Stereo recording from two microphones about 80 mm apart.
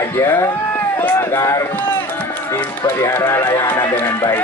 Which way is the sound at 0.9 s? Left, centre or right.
Left.